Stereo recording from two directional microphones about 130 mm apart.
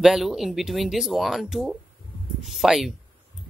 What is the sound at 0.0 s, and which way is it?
Speech, 5° right (ahead or behind).